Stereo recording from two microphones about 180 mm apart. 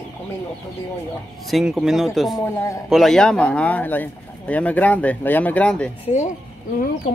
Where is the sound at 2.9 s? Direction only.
Centre (ahead or behind).